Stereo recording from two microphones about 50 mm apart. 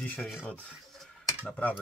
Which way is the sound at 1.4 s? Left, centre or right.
Left.